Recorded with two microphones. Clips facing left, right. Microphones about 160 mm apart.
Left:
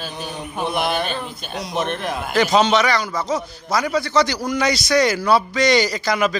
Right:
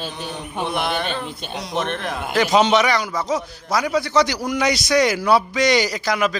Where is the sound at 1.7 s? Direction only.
5° left (ahead or behind).